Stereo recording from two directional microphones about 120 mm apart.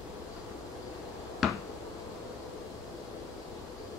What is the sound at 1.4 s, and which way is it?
Finger snapping, 5° right (ahead or behind).